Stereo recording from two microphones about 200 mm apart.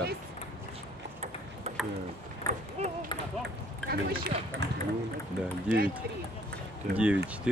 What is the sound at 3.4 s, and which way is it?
Ping, 50° right (ahead or behind).